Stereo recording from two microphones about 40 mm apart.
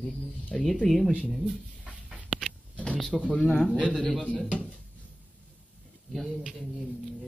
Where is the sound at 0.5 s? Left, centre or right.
Centre.